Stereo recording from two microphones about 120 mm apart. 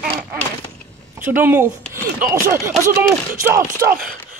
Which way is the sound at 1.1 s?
15° right (ahead or behind).